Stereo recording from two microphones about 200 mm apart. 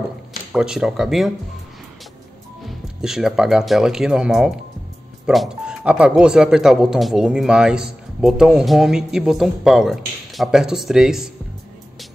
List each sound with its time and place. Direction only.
0.5 s speech: 5° right (ahead or behind)
3.0 s speech: 5° right (ahead or behind)